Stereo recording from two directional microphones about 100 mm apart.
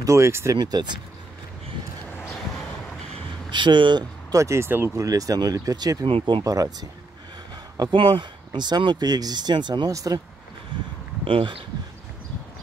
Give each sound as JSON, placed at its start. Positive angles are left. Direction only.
{"t": 0.0, "sound": "speech", "side_deg": -30}
{"t": 0.6, "sound": "speech", "side_deg": -45}
{"t": 3.4, "sound": "speech", "side_deg": -50}
{"t": 4.3, "sound": "speech", "side_deg": -30}
{"t": 7.9, "sound": "speech", "side_deg": -55}
{"t": 9.9, "sound": "speech", "side_deg": -35}
{"t": 11.2, "sound": "speech", "side_deg": -65}